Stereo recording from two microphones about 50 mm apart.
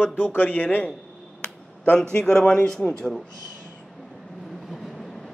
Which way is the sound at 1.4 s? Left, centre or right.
Left.